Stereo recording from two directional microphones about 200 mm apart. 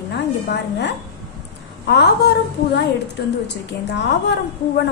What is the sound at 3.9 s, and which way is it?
Speech, 55° left (ahead or behind).